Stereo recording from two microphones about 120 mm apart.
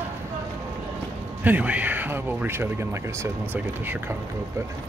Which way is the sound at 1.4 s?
15° right (ahead or behind).